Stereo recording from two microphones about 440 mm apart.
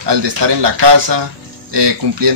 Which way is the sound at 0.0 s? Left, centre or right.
Right.